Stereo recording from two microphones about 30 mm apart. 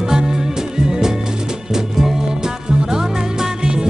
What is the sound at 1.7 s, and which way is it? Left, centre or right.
Music, centre.